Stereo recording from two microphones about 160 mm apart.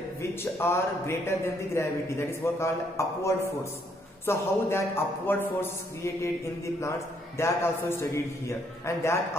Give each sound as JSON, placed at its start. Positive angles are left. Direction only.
{"t": 0.2, "sound": "a man's voice", "side_deg": 15}